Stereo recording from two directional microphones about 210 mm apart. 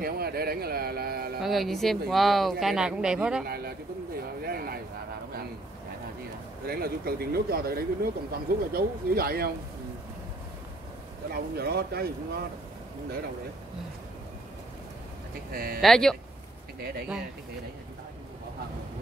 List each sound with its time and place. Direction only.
0.0 s speech: 45° right (ahead or behind)
1.4 s speech: centre (ahead or behind)
3.4 s a sound: 45° right (ahead or behind)
6.6 s speech: 45° right (ahead or behind)
11.3 s speech: 50° right (ahead or behind)
15.5 s speech: 45° right (ahead or behind)
15.8 s speech: centre (ahead or behind)